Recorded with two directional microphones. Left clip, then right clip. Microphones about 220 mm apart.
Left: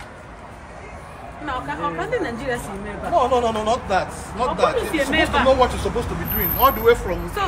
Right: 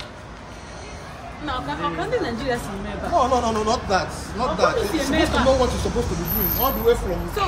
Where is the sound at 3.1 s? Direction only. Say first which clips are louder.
Left 1 dB; 50° left (ahead or behind).